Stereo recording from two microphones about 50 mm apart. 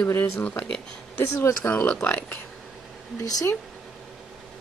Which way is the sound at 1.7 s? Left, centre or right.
Left.